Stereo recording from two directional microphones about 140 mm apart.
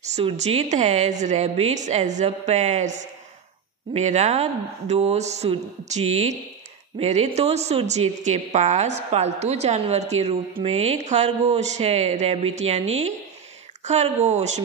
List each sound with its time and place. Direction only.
0.0 s a woman's voice: 55° right (ahead or behind)